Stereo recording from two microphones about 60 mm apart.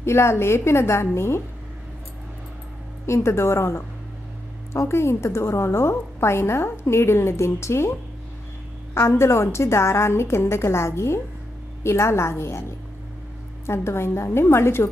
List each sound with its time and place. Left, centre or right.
0.0 s a woman's voice: left
3.1 s a woman's voice: left
9.2 s a woman's voice: left